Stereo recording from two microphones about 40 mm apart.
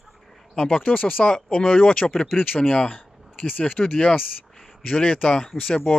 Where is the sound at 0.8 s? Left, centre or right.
Left.